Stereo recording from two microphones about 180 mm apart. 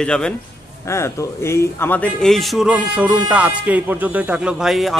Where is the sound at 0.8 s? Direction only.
15° left (ahead or behind).